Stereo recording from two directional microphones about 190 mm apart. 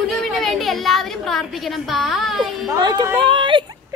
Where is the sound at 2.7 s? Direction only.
20° right (ahead or behind).